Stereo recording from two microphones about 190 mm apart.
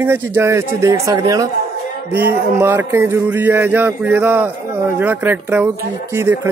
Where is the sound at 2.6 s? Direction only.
10° right (ahead or behind).